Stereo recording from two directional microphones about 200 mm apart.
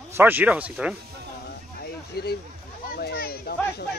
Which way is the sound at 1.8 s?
50° left (ahead or behind).